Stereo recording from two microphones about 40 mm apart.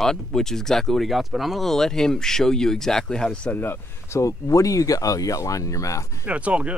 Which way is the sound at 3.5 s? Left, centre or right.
Left.